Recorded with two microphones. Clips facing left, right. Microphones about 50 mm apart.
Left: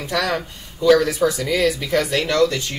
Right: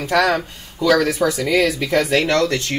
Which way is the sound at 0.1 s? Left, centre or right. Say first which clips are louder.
Right 5 dB; right.